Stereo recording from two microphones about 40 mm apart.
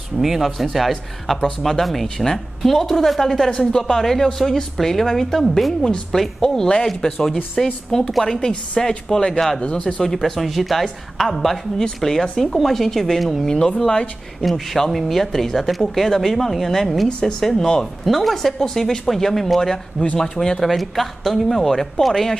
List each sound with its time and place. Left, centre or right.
0.2 s speech: centre
8.4 s speech: centre
9.6 s speech: left
10.0 s speech: centre
17.2 s speech: centre